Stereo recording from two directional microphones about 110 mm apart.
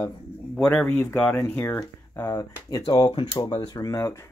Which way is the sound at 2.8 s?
45° left (ahead or behind).